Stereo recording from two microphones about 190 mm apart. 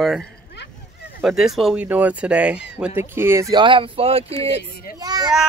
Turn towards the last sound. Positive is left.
turn(degrees=-20)  # may be behind; listen again after turning